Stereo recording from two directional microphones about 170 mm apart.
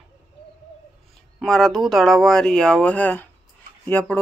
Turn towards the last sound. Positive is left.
turn(degrees=10)  # may be behind; listen again after turning